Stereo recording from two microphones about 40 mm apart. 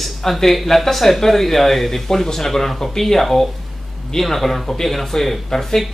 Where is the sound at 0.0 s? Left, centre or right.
Centre.